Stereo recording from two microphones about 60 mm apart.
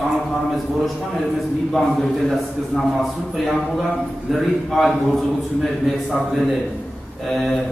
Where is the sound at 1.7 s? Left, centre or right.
Centre.